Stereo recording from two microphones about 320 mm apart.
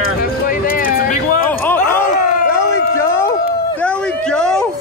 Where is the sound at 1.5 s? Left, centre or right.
Centre.